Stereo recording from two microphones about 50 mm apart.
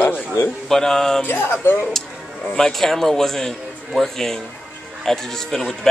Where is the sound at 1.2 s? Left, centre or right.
Left.